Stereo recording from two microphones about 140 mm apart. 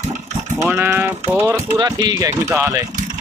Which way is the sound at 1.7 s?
30° right (ahead or behind).